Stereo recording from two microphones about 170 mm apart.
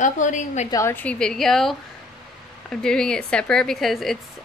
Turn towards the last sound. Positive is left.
turn(degrees=0)  # may be behind; listen again after turning